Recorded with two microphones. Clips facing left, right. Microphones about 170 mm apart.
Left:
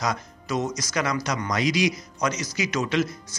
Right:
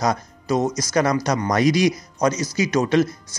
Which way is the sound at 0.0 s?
40° right (ahead or behind).